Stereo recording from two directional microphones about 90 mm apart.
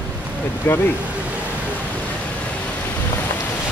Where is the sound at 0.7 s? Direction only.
20° left (ahead or behind).